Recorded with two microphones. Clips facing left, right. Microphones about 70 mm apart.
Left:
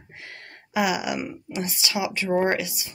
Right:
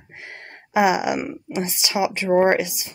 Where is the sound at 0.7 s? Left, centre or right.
Right.